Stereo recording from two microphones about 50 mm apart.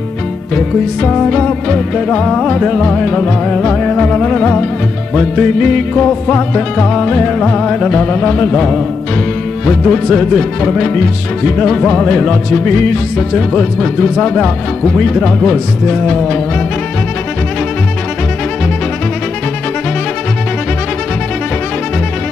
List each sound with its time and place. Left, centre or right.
0.6 s music: centre
7.3 s music: centre
9.7 s music: centre